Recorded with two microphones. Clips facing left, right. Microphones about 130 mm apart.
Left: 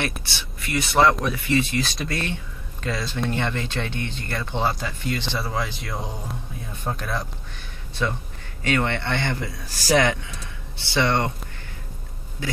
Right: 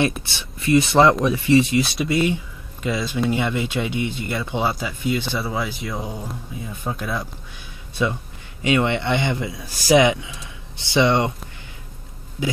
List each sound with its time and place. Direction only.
0.2 s speech: 25° right (ahead or behind)
2.0 s speech: 5° right (ahead or behind)
12.4 s speech: 15° right (ahead or behind)